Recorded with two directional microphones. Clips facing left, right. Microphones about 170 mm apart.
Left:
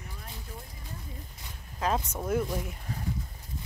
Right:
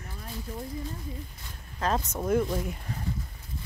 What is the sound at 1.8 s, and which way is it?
Speech, 10° left (ahead or behind).